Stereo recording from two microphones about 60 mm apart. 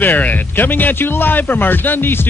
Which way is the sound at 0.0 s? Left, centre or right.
Left.